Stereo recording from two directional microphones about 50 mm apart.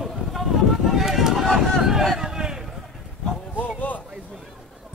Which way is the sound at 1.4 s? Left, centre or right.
Centre.